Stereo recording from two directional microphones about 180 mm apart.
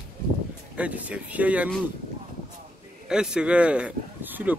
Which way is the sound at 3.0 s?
5° right (ahead or behind).